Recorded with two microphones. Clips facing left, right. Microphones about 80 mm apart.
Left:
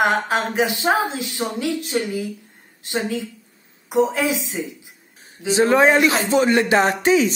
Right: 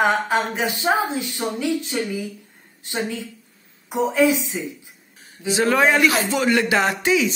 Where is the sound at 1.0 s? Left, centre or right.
Left.